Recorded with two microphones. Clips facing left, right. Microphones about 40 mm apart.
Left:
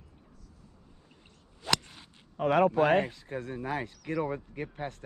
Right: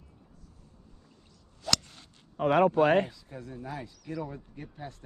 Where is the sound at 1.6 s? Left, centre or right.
Left.